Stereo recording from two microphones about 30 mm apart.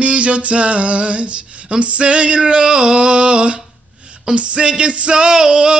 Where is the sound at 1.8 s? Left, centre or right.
Right.